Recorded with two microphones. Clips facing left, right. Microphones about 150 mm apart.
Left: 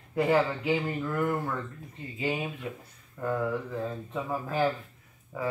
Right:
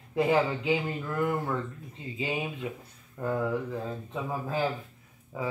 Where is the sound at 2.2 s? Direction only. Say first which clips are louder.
Left 1 dB; 20° right (ahead or behind).